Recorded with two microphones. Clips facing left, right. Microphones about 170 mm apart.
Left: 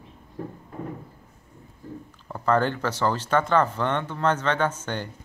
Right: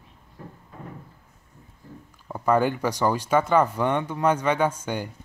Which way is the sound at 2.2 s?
10° right (ahead or behind).